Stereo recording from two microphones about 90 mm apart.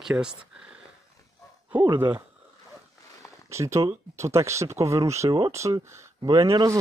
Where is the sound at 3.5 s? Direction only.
35° right (ahead or behind).